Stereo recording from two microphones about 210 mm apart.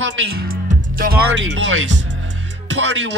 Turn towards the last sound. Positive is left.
turn(degrees=-60)  # may be behind; listen again after turning